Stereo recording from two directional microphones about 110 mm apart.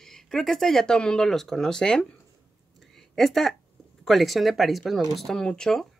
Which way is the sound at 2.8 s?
5° left (ahead or behind).